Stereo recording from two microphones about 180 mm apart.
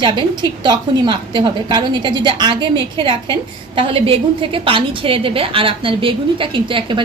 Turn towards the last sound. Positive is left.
turn(degrees=-25)  # may be behind; listen again after turning